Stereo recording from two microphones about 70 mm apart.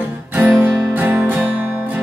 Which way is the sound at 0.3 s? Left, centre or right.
Right.